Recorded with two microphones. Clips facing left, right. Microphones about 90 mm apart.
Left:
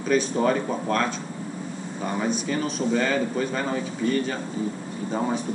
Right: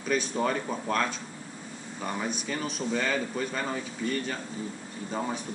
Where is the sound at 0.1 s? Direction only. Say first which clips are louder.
Left 6 dB; centre (ahead or behind).